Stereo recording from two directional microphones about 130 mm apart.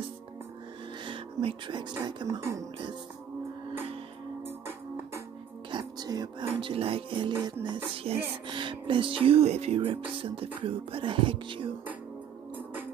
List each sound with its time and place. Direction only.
1.0 s speech: 40° right (ahead or behind)
4.5 s music: 20° right (ahead or behind)
5.7 s whispering: 35° right (ahead or behind)
6.5 s music: 45° right (ahead or behind)
7.3 s music: 20° right (ahead or behind)
7.6 s music: 40° right (ahead or behind)
10.6 s speech: 45° right (ahead or behind)